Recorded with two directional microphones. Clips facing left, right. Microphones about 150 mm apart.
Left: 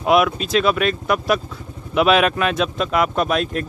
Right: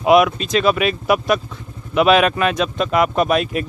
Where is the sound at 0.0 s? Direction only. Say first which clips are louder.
Right 3 dB; centre (ahead or behind).